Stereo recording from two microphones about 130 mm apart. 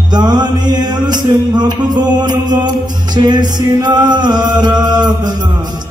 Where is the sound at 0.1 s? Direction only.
35° right (ahead or behind).